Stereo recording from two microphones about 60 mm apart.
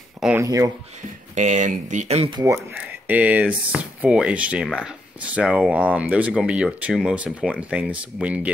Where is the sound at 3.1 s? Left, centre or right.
Right.